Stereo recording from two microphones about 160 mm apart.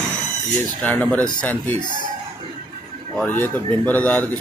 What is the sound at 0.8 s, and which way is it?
Speech, 10° left (ahead or behind).